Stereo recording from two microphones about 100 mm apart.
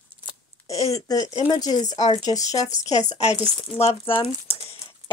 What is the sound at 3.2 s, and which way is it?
Speech, 90° left.